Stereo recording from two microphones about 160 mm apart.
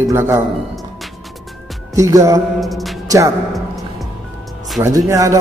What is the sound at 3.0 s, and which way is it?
Speech, 20° right (ahead or behind).